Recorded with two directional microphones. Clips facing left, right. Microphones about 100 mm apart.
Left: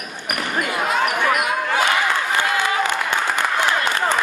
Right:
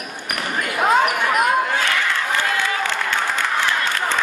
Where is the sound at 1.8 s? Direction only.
15° left (ahead or behind).